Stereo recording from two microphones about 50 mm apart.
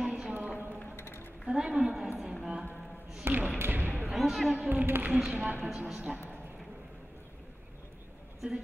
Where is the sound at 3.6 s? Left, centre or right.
Right.